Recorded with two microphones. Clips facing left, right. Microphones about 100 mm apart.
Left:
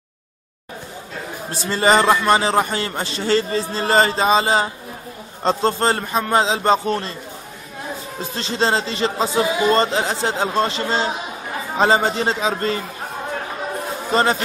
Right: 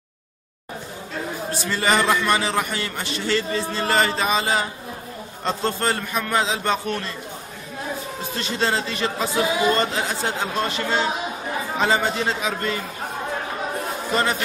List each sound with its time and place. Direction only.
1.7 s a man's voice: 30° left (ahead or behind)
8.4 s a man's voice: 30° left (ahead or behind)
14.1 s a man's voice: 30° left (ahead or behind)